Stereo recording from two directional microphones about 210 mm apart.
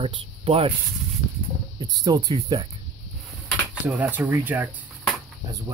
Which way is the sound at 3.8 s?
10° right (ahead or behind).